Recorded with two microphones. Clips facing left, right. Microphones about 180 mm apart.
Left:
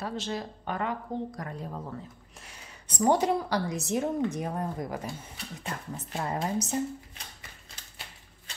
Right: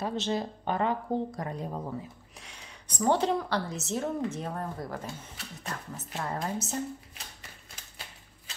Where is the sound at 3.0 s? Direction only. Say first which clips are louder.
Left 2 dB; 10° left (ahead or behind).